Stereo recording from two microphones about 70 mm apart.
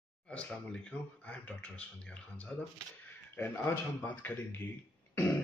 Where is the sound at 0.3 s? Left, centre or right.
Centre.